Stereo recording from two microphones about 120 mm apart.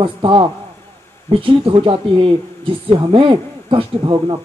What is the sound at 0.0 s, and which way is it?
Speech, 45° right (ahead or behind).